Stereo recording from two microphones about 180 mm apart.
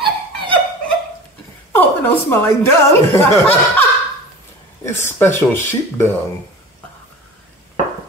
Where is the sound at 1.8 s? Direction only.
10° left (ahead or behind).